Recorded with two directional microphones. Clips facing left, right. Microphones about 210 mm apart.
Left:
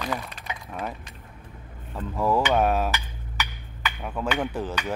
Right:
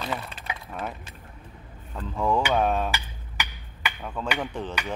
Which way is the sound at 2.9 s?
10° right (ahead or behind).